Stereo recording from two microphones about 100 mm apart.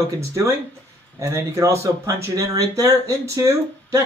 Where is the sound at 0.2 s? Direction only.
30° right (ahead or behind).